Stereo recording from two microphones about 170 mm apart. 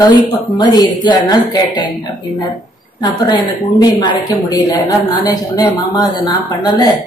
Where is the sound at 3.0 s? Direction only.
25° left (ahead or behind).